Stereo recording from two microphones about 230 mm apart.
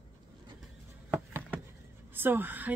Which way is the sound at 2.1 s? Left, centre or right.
Centre.